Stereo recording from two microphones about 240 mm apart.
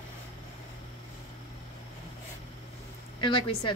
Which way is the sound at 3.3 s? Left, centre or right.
Left.